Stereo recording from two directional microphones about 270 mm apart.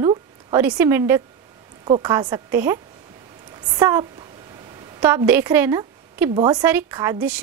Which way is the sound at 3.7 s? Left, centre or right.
Centre.